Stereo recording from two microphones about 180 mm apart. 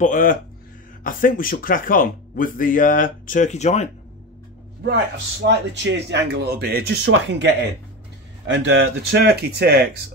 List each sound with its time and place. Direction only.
0.0 s speech: 50° left (ahead or behind)
5.5 s speech: 80° right
8.5 s speech: 85° right; by 9.8 s 65° right (ahead or behind)